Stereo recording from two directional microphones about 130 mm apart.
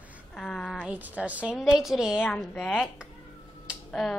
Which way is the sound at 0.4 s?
5° left (ahead or behind).